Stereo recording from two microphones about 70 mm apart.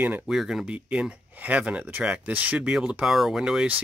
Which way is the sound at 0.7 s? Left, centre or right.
Centre.